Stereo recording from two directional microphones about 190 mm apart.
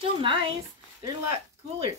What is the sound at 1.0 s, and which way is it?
Speech, 15° right (ahead or behind).